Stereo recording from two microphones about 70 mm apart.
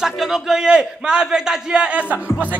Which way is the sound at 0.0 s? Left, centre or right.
Centre.